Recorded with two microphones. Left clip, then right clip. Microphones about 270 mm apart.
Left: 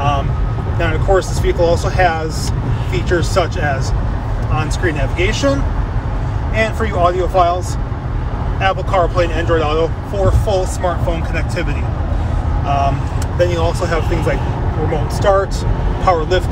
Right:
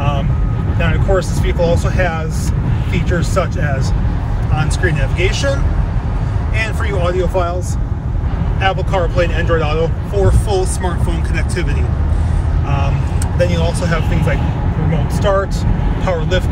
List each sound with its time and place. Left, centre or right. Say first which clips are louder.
0.7 s speech: left 2 dB; left
8.5 s speech: left 2 dB; left
13.4 s speech: left 2 dB; left